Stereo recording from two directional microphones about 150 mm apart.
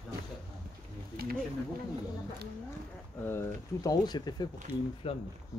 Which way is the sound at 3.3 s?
20° left (ahead or behind).